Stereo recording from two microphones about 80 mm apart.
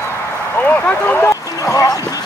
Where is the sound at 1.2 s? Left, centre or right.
Left.